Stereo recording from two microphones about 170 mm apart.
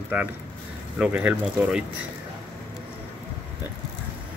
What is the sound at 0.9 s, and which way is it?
Speech, 5° right (ahead or behind).